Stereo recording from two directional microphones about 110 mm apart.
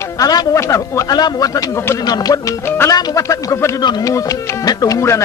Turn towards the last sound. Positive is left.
turn(degrees=30)  # may be behind; listen again after turning